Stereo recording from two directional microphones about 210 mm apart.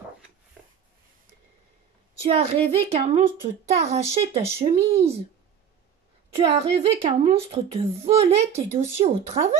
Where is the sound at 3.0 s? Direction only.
30° right (ahead or behind).